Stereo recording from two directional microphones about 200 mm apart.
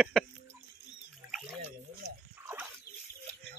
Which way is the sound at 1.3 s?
Centre (ahead or behind).